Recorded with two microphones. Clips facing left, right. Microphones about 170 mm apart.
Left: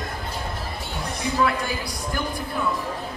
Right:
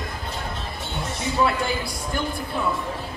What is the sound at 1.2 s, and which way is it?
Speech, 25° right (ahead or behind).